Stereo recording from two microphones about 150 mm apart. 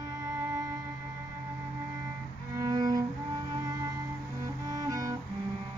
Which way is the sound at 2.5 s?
25° right (ahead or behind).